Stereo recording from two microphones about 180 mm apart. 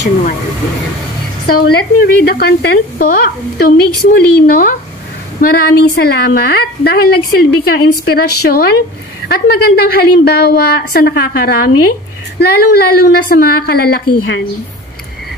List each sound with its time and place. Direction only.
1.5 s a woman's voice: 60° left (ahead or behind)